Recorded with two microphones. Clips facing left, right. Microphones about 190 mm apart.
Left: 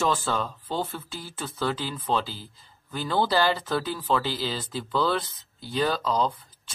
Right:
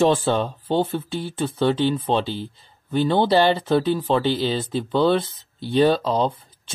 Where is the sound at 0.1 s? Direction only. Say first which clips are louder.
Right 7 dB; 30° right (ahead or behind).